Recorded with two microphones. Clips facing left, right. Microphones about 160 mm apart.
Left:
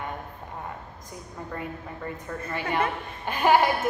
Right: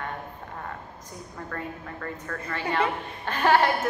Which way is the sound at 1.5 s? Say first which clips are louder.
Left 1 dB; 15° left (ahead or behind).